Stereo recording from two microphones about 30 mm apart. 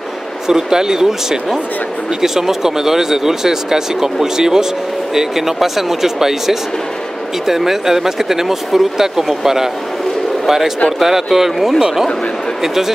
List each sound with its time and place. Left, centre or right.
0.5 s speech: centre